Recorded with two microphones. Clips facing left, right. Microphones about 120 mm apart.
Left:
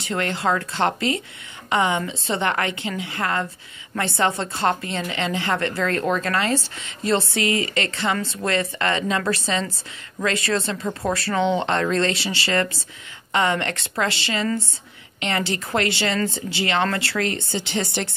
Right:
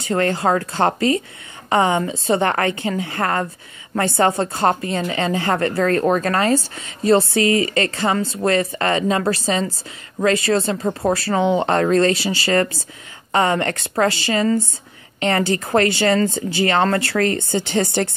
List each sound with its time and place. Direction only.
0.1 s a woman's voice: 40° right (ahead or behind)